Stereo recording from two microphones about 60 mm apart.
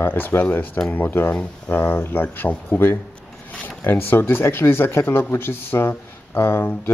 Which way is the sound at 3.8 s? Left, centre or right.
Left.